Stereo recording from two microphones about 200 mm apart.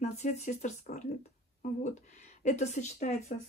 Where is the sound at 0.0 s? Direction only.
35° left (ahead or behind).